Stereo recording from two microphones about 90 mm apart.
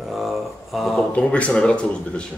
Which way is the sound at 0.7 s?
Centre (ahead or behind).